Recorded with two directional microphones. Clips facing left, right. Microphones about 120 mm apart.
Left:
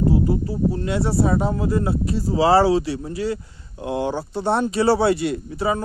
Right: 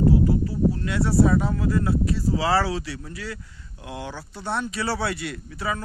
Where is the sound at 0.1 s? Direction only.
25° left (ahead or behind).